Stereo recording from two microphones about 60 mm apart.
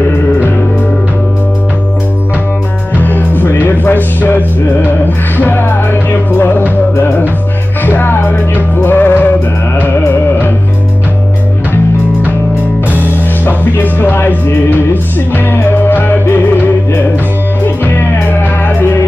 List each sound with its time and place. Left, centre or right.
3.0 s music: left
13.5 s music: left